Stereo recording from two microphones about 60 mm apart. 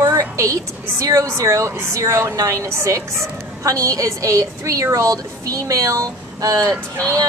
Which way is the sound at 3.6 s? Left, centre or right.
Right.